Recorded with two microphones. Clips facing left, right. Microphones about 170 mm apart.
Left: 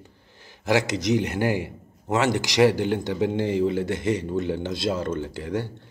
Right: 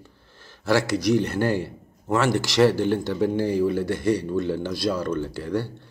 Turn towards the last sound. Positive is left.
turn(degrees=20)  # may be behind; listen again after turning